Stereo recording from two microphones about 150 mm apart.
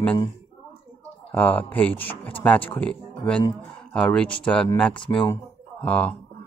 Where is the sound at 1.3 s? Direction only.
10° left (ahead or behind).